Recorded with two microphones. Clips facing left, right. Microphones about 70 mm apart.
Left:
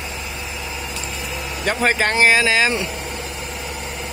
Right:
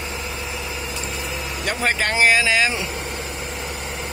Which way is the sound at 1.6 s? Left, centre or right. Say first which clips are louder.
Left 4 dB; centre.